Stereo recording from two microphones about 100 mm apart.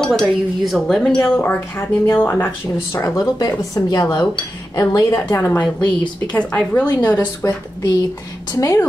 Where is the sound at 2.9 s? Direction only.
35° left (ahead or behind).